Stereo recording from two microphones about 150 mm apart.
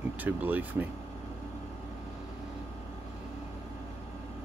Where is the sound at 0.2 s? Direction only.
10° right (ahead or behind).